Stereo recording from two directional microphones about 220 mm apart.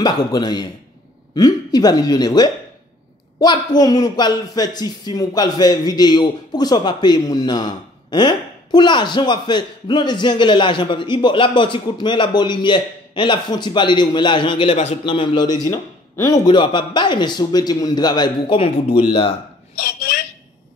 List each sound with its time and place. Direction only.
0.0 s speech: 20° left (ahead or behind)
19.8 s speech: 40° left (ahead or behind)